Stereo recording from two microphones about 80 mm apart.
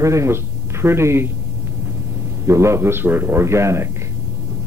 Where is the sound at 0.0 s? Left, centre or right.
Right.